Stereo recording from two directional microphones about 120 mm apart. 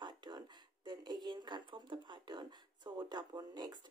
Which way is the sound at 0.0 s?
35° right (ahead or behind).